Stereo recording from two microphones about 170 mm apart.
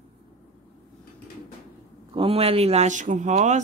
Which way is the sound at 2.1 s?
35° right (ahead or behind).